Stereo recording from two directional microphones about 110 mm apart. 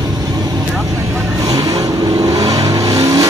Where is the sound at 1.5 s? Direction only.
35° right (ahead or behind).